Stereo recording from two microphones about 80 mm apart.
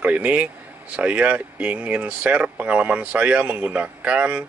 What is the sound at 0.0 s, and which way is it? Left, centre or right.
Speech, centre.